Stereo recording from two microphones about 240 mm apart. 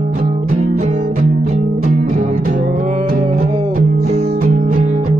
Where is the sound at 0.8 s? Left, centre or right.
Right.